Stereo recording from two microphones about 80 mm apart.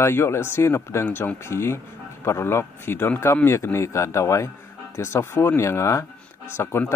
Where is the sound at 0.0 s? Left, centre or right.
Left.